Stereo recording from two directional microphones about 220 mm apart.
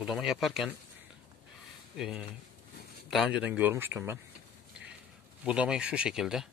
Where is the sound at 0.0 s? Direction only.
Centre (ahead or behind).